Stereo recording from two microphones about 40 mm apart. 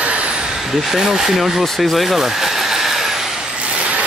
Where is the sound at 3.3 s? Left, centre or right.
Right.